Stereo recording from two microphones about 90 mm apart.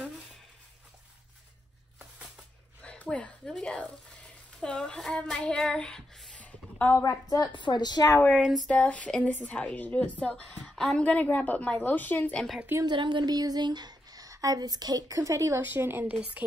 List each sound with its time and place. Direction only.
2.8 s speech: 15° left (ahead or behind)
7.0 s a woman's voice: 45° left (ahead or behind)
8.4 s speech: 5° right (ahead or behind)
8.6 s a woman's voice: 15° left (ahead or behind)
12.8 s speech: 60° right (ahead or behind); by 15.6 s 35° right (ahead or behind)
15.6 s a woman's voice: 20° right (ahead or behind)